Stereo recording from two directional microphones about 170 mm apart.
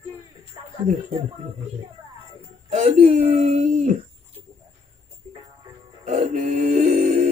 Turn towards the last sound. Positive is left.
turn(degrees=-40)  # may be behind; listen again after turning